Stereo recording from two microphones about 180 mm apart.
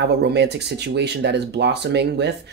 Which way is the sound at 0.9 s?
70° right (ahead or behind).